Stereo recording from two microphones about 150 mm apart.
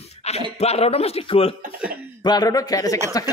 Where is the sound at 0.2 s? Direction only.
45° left (ahead or behind).